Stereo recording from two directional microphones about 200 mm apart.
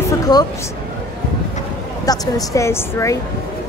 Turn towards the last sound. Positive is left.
turn(degrees=15)  # may be behind; listen again after turning